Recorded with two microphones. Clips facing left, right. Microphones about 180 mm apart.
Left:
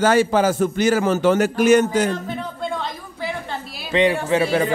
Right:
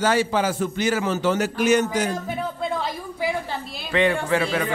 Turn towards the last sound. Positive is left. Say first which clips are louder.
# left 3 dB
turn(degrees=20)  # may be behind; listen again after turning